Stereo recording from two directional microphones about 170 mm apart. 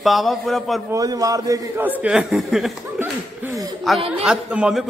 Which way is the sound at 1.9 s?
5° right (ahead or behind).